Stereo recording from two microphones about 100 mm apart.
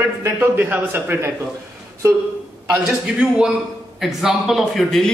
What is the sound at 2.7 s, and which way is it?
A man's voice, 10° right (ahead or behind).